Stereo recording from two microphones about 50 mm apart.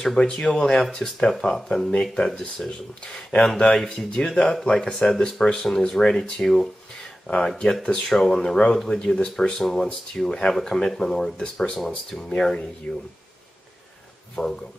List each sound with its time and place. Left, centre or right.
0.0 s speech: centre
12.9 s speech: left
14.3 s speech: centre